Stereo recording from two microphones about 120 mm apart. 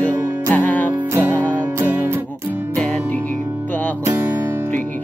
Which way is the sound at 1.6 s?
15° right (ahead or behind).